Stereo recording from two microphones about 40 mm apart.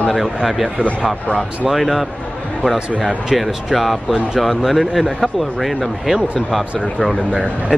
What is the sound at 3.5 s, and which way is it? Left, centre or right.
Speech, centre.